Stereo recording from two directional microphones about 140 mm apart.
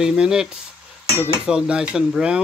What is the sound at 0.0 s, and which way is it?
Speech, 5° right (ahead or behind).